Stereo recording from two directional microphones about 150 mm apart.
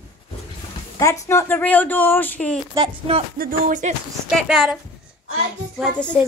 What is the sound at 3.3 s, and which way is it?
Music, 65° right (ahead or behind).